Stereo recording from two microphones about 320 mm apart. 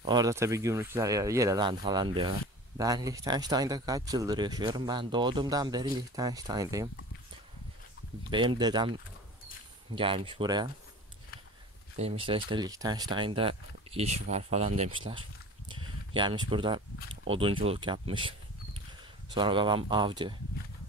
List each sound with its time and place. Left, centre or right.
0.0 s speech: centre
8.3 s speech: centre
9.9 s speech: centre
12.0 s speech: centre
19.3 s speech: centre